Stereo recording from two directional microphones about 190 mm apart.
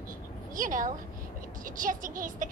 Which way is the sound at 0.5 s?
45° right (ahead or behind).